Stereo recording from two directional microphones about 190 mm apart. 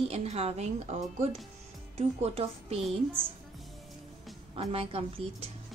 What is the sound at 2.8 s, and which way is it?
Speech, 5° left (ahead or behind).